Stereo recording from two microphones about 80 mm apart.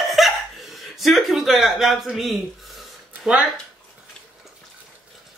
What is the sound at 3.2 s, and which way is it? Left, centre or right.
Speech, centre.